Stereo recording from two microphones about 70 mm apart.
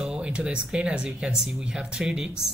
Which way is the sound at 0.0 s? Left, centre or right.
Centre.